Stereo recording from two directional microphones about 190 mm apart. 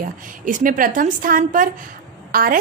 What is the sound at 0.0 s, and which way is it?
A woman's voice, 45° right (ahead or behind).